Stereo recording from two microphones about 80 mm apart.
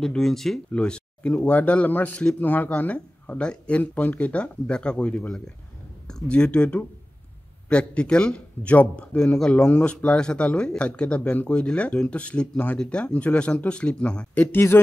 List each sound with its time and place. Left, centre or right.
0.0 s speech: centre
14.3 s a man's voice: left